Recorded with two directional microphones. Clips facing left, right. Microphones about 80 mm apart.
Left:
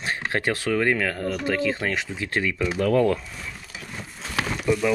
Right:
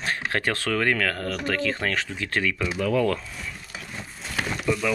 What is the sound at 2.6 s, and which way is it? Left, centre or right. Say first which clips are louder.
Speech: left 5 dB; left.